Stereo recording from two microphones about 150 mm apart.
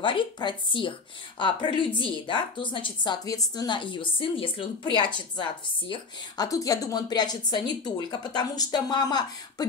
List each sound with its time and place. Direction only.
0.0 s a woman's voice: 35° left (ahead or behind)